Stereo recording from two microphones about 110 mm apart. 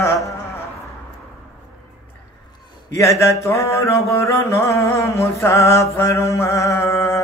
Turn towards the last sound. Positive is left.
turn(degrees=25)  # may be behind; listen again after turning